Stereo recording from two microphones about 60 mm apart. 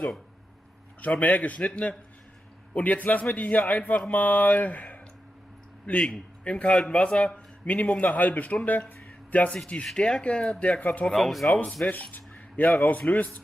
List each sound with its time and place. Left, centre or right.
1.0 s a man's voice: left
11.1 s speech: centre
11.8 s a man's voice: left